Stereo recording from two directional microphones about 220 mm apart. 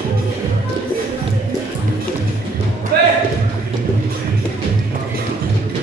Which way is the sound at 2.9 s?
45° right (ahead or behind).